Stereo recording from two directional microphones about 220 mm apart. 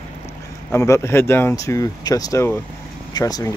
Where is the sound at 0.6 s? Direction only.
10° left (ahead or behind).